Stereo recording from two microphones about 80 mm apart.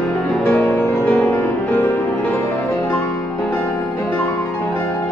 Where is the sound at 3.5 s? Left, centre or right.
Centre.